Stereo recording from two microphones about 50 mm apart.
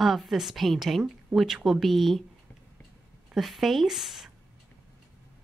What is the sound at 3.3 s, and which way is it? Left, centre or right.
A woman's voice, centre.